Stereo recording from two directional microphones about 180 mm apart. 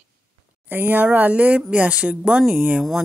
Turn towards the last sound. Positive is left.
turn(degrees=-5)  # may be behind; listen again after turning